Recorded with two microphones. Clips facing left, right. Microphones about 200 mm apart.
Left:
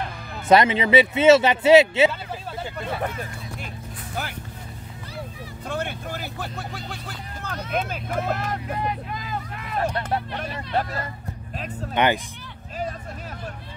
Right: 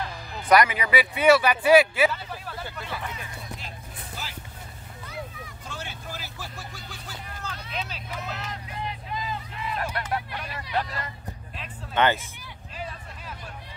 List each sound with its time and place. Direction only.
0.5 s speech: 25° left (ahead or behind)
2.8 s vehicle: 55° left (ahead or behind)
5.7 s speech: 60° left (ahead or behind)
11.9 s speech: 15° left (ahead or behind)
12.7 s hubbub: 45° left (ahead or behind)